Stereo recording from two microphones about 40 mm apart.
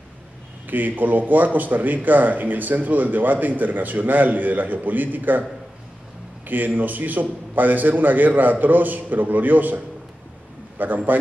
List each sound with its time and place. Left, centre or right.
0.7 s a man's voice: right
6.4 s a man's voice: right
10.8 s a man's voice: right